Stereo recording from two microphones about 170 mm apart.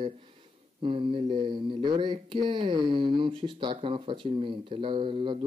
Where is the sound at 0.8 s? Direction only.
30° right (ahead or behind).